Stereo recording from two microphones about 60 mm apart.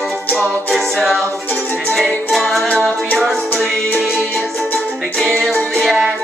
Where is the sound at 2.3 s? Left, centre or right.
Centre.